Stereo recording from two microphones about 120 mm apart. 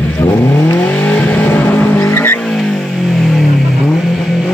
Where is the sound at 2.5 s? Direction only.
5° left (ahead or behind).